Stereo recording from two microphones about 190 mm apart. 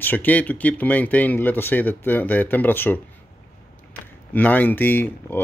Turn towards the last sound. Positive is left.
turn(degrees=10)  # may be behind; listen again after turning